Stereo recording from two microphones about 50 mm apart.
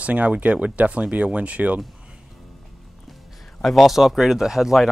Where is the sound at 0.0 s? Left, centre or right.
Right.